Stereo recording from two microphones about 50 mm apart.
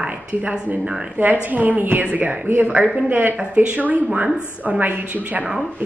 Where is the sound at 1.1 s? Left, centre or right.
Right.